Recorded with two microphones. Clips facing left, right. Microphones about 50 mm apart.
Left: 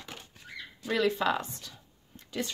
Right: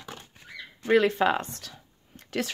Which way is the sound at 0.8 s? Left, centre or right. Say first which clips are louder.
Right 6 dB; right.